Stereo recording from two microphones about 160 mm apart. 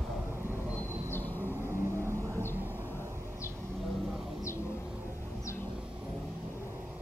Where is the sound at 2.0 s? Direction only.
20° right (ahead or behind).